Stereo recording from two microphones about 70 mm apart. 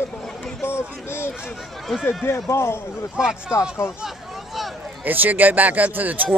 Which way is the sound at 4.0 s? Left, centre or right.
Centre.